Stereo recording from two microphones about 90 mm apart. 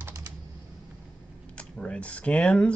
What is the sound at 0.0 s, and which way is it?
Typing, 35° right (ahead or behind).